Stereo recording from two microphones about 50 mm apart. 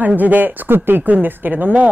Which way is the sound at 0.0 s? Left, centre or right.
Right.